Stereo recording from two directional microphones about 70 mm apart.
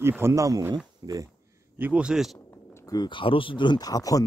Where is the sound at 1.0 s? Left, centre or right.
Right.